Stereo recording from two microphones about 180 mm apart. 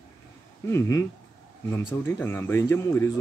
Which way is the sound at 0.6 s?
15° left (ahead or behind).